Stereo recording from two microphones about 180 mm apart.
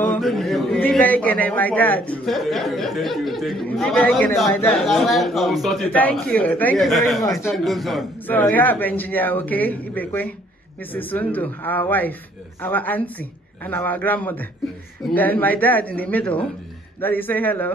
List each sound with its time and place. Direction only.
0.2 s a sound: centre (ahead or behind)
0.7 s a man's voice: 10° left (ahead or behind)
4.8 s a man's voice: centre (ahead or behind)